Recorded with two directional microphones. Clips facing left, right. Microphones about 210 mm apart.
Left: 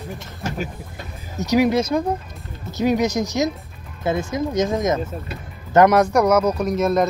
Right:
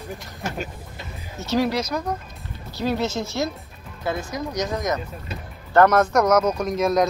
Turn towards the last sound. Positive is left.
turn(degrees=5)  # may be behind; listen again after turning